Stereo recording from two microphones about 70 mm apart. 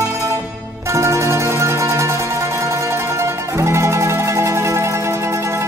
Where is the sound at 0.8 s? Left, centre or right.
Right.